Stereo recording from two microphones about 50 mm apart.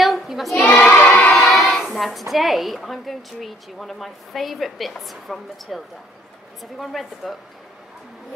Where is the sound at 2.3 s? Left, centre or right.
Centre.